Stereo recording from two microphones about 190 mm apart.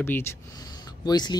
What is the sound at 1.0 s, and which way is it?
Speech, 20° left (ahead or behind).